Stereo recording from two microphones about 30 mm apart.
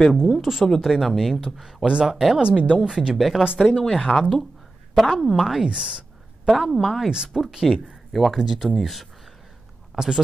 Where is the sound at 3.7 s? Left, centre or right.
Centre.